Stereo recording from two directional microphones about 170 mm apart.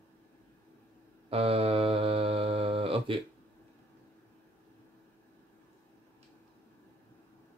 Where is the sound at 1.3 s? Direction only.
35° right (ahead or behind).